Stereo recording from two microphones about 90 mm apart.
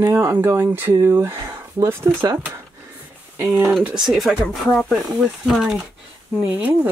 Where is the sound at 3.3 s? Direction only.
30° right (ahead or behind).